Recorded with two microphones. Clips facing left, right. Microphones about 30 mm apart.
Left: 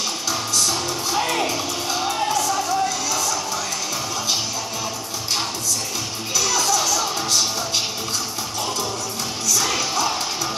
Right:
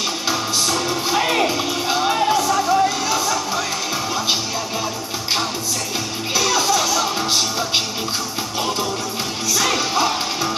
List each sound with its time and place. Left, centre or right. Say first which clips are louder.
0.3 s music: right 2 dB; right
6.3 s music: right 3 dB; right
9.5 s music: right 3 dB; right